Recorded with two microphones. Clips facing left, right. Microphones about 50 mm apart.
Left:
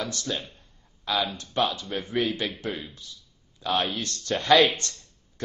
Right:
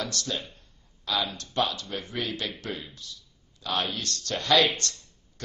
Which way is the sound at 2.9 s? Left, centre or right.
Centre.